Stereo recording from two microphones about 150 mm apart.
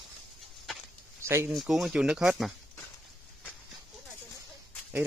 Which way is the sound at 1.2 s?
15° right (ahead or behind).